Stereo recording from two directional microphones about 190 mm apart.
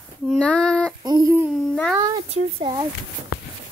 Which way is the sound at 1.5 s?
Centre (ahead or behind).